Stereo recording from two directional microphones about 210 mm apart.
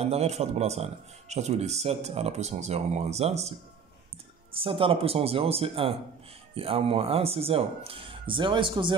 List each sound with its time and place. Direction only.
0.0 s speech: 30° right (ahead or behind)
4.6 s speech: 25° right (ahead or behind)